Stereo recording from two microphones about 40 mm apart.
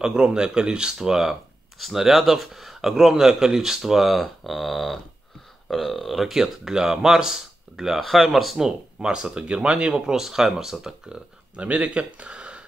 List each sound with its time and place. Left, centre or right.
0.0 s speech: right; by 8.5 s centre
8.5 s speech: centre
10.0 s speech: centre
11.5 s speech: right